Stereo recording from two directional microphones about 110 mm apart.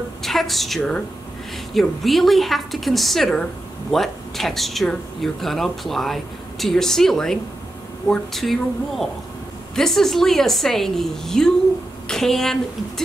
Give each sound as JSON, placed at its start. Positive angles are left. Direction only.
{"t": 0.2, "sound": "speech", "side_deg": 0}